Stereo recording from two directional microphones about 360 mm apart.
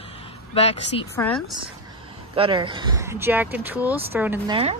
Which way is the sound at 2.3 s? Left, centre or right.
Centre.